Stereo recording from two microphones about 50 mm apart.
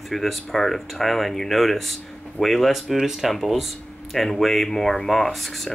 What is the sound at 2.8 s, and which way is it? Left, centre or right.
Speech, centre.